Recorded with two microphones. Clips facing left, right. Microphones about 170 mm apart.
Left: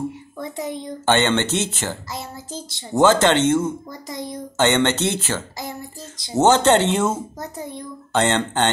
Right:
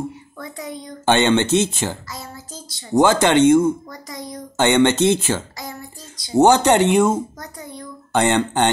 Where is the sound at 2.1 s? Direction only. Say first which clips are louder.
Left 3 dB; 25° left (ahead or behind).